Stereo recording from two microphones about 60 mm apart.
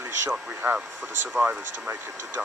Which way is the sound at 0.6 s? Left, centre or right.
Right.